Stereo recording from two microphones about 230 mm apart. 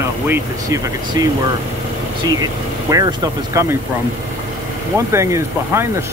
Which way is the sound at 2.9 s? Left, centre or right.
Centre.